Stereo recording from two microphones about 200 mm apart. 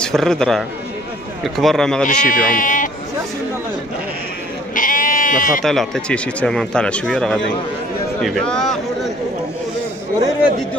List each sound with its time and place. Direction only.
0.0 s speech: centre (ahead or behind)
2.0 s speech: 40° left (ahead or behind)
4.7 s sheep: 40° left (ahead or behind)
5.6 s speech: centre (ahead or behind)